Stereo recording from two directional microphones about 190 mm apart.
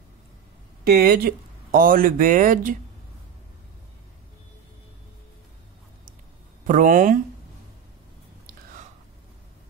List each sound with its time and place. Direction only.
0.8 s speech: 55° right (ahead or behind)
6.6 s speech: 45° right (ahead or behind)